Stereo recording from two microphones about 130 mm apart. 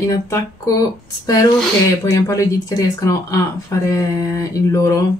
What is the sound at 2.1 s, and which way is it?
Speech, 25° left (ahead or behind).